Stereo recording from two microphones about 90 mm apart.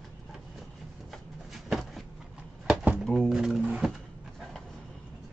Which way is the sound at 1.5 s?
Centre (ahead or behind).